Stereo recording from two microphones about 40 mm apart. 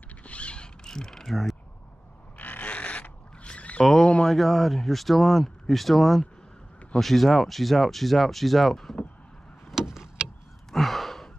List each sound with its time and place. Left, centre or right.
0.2 s mechanisms: left
0.8 s mechanisms: centre
2.3 s a sound: left
3.8 s a sound: centre
4.3 s speech: centre
9.8 s vehicle: centre
10.7 s sigh: centre